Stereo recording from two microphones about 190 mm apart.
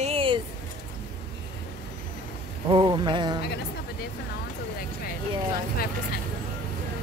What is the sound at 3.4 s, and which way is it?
Speech, 60° left (ahead or behind).